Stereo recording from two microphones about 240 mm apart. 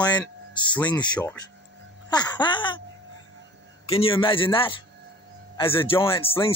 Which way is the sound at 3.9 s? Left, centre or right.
Left.